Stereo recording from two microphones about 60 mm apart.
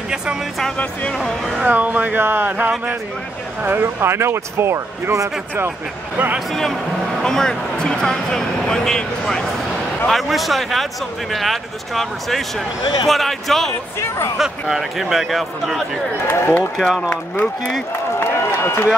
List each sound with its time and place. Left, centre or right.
1.1 s speech: centre
1.6 s speech: right
2.2 s speech: right
3.6 s speech: right
6.5 s speech: centre
13.9 s speech: left
14.4 s speech: centre
16.3 s speech: left
18.2 s run: left